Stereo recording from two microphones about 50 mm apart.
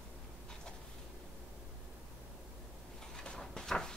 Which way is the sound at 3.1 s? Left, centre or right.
Centre.